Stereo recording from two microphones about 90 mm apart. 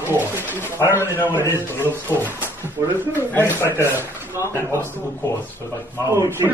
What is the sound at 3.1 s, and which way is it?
Speech, 25° left (ahead or behind).